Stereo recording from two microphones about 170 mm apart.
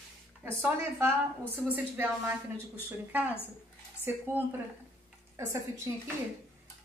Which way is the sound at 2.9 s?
10° right (ahead or behind).